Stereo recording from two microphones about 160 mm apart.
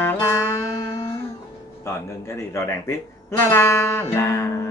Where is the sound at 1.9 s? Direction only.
15° left (ahead or behind).